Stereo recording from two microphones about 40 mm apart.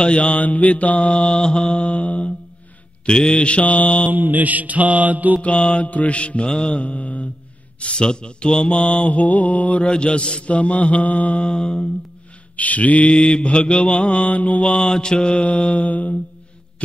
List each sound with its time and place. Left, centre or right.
0.0 s mantra: left
0.4 s mantra: left
3.1 s mantra: left
4.1 s mantra: right
5.4 s mantra: left
7.8 s mantra: left
9.8 s mantra: left
11.4 s mantra: left
12.5 s mantra: left
13.1 s mantra: centre; by 14.7 s left
14.7 s mantra: left